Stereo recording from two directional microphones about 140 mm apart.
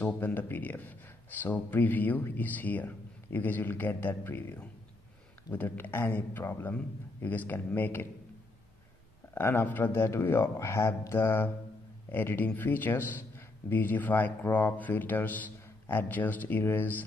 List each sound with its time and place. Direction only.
0.0 s speech: 10° left (ahead or behind)
9.3 s speech: 15° left (ahead or behind)